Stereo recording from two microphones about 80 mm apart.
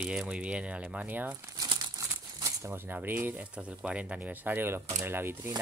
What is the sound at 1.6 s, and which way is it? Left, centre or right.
Crumpling, right.